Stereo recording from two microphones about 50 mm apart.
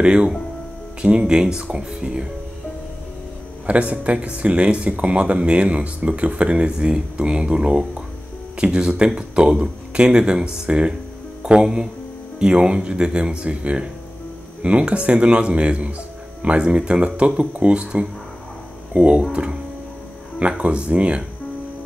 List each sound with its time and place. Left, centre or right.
0.0 s speech: right
3.6 s speech: right
20.3 s speech: right